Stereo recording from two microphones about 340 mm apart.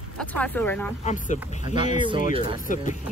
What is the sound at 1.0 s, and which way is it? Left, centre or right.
Speech, left.